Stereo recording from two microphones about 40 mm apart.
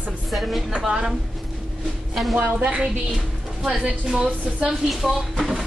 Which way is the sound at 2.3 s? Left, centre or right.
Right.